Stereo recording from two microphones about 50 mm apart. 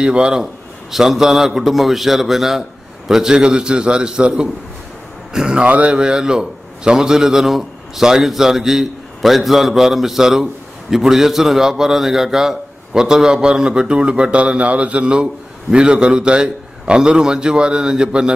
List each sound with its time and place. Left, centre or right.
0.0 s a man's voice: centre
0.9 s a man's voice: centre
5.7 s speech: right
5.9 s a man's voice: centre